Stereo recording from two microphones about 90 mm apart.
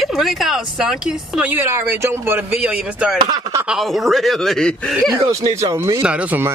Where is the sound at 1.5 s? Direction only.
25° right (ahead or behind).